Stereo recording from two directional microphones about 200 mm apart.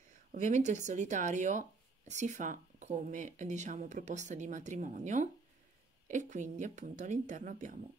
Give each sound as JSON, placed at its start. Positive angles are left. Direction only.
{"t": 0.3, "sound": "speech", "side_deg": -35}